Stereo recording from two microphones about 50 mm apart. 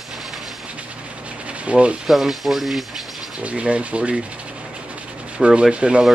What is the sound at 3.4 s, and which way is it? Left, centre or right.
Sanding, right.